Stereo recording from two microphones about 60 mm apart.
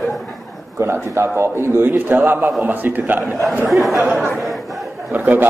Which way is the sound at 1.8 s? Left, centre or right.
Right.